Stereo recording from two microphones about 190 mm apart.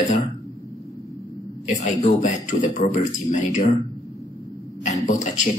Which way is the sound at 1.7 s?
40° left (ahead or behind).